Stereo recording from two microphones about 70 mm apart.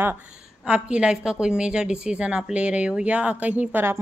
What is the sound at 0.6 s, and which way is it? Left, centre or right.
A woman's voice, centre.